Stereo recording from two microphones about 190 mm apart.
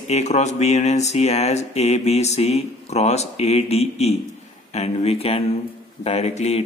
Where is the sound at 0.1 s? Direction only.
35° left (ahead or behind).